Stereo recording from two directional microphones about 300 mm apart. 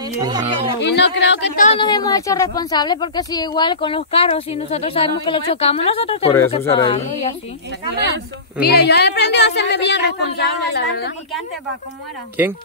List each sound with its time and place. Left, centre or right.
0.0 s speech: centre
0.7 s a woman's voice: left
1.7 s a woman's voice: centre
8.5 s a woman's voice: left